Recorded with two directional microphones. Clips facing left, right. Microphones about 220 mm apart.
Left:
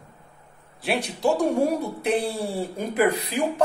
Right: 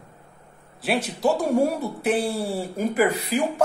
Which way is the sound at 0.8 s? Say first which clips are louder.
Right 1 dB; centre (ahead or behind).